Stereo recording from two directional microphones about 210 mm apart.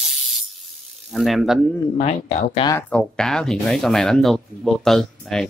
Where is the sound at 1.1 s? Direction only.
Centre (ahead or behind).